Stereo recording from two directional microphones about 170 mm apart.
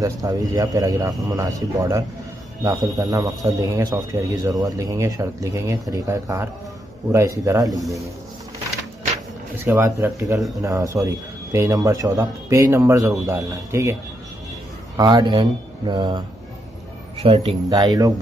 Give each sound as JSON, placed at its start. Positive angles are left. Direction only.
{"t": 0.0, "sound": "a man's voice", "side_deg": -20}
{"t": 9.7, "sound": "a man's voice", "side_deg": -15}
{"t": 15.0, "sound": "a man's voice", "side_deg": -25}